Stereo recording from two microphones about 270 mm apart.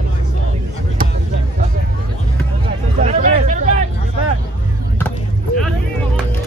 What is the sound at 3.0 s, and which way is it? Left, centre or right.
Hubbub, right.